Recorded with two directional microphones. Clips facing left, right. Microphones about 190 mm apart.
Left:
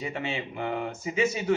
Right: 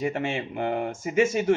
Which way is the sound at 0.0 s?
50° right (ahead or behind).